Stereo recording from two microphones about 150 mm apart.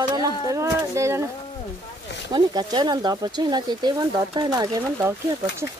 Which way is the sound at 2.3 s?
30° right (ahead or behind).